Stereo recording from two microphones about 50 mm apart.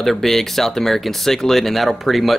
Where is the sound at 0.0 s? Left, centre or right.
Centre.